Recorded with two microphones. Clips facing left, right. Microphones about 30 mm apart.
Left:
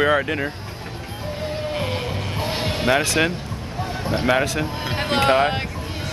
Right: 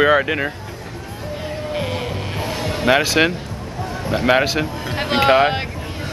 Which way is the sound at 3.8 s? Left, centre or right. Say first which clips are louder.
Right 2 dB; centre.